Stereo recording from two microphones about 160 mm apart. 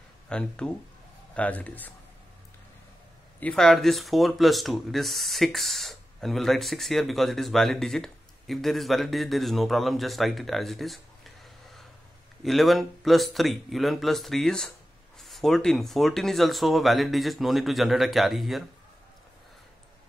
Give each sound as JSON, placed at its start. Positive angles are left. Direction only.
{"t": 0.3, "sound": "speech", "side_deg": 5}
{"t": 3.3, "sound": "speech", "side_deg": 5}